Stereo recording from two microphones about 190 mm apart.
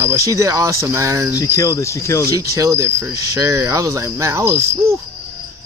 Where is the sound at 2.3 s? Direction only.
15° right (ahead or behind).